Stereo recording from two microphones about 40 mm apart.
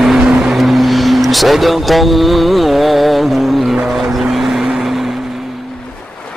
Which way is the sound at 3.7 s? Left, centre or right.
Centre.